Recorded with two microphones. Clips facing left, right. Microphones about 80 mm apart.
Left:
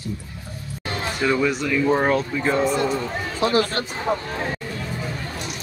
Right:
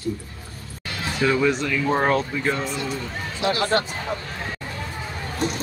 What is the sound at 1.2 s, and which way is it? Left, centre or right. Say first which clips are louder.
Speech: right 1 dB; centre.